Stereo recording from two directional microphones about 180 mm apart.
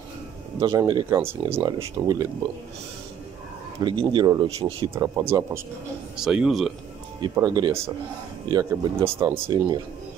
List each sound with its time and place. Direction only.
0.6 s speech: 25° right (ahead or behind)
1.1 s speech: 15° right (ahead or behind)
3.8 s speech: 30° right (ahead or behind)
4.9 s speech: 15° right (ahead or behind)
6.1 s a man's voice: 5° right (ahead or behind)
7.2 s speech: 25° right (ahead or behind)